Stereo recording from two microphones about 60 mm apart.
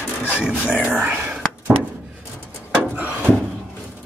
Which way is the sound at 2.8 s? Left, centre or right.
Right.